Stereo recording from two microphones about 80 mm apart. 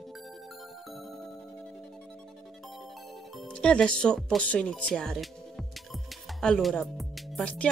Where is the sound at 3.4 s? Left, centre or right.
Centre.